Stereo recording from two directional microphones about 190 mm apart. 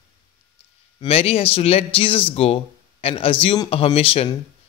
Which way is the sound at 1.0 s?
30° left (ahead or behind).